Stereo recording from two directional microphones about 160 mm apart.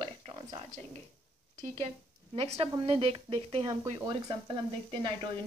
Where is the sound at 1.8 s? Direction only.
35° right (ahead or behind).